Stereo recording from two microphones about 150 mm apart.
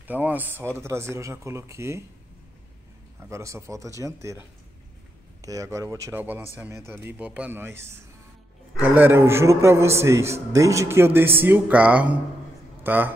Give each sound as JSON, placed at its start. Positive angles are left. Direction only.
{"t": 0.1, "sound": "speech", "side_deg": -10}
{"t": 3.2, "sound": "a man's voice", "side_deg": -20}